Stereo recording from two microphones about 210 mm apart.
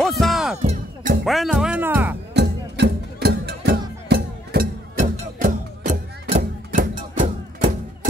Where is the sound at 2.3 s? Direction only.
55° right (ahead or behind); by 8.1 s 35° right (ahead or behind).